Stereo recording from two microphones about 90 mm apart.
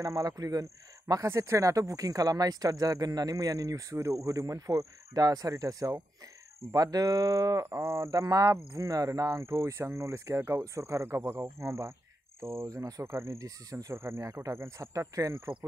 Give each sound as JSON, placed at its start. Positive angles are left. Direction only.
{"t": 0.0, "sound": "speech", "side_deg": -40}
{"t": 13.0, "sound": "speech", "side_deg": -30}